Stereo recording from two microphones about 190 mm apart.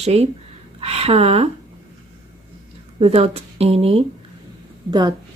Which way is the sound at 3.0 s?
30° right (ahead or behind).